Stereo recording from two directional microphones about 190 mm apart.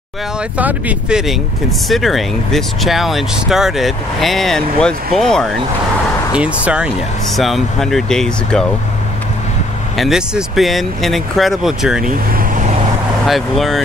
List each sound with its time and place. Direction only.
0.6 s speech: 10° right (ahead or behind)
9.9 s speech: centre (ahead or behind)
12.4 s vehicle: 40° right (ahead or behind)
13.3 s speech: centre (ahead or behind)